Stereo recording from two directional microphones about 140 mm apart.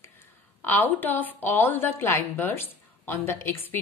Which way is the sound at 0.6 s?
15° left (ahead or behind).